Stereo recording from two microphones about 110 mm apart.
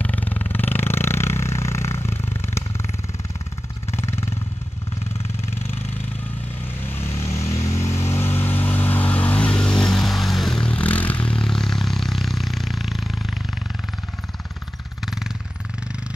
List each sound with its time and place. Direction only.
0.0 s a sound: 15° left (ahead or behind)
3.9 s vehicle: 25° left (ahead or behind)
6.9 s vehicle: 20° left (ahead or behind); by 13.4 s centre (ahead or behind)